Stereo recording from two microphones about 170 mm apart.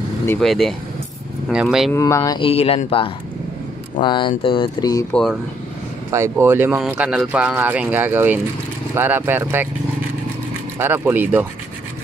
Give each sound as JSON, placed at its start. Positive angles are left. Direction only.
{"t": 0.4, "sound": "speech", "side_deg": 0}
{"t": 1.9, "sound": "speech", "side_deg": 15}
{"t": 5.1, "sound": "speech", "side_deg": 0}
{"t": 6.0, "sound": "speech", "side_deg": -15}
{"t": 10.8, "sound": "speech", "side_deg": -10}